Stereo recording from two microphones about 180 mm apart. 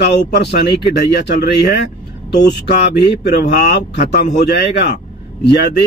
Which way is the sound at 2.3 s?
70° left (ahead or behind).